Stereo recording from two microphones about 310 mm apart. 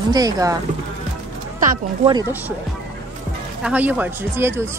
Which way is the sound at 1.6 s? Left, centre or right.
Centre.